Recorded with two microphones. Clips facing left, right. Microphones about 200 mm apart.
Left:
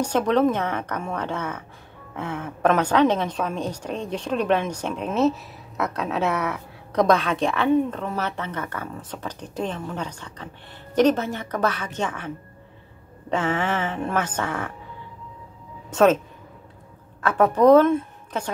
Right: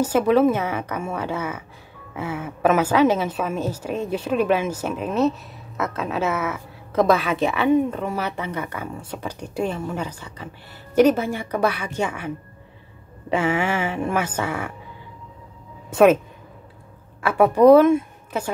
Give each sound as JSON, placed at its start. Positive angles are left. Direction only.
{"t": 0.0, "sound": "a woman's voice", "side_deg": -5}
{"t": 13.3, "sound": "a woman's voice", "side_deg": -10}
{"t": 15.9, "sound": "a woman's voice", "side_deg": -10}
{"t": 17.2, "sound": "a woman's voice", "side_deg": -10}